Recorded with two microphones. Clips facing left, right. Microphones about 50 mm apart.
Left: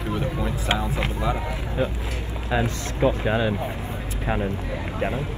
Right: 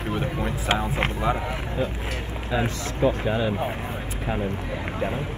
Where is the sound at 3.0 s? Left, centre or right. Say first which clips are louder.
Left 1 dB; left.